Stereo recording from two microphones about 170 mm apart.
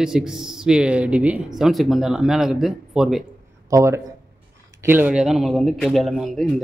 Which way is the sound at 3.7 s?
15° right (ahead or behind).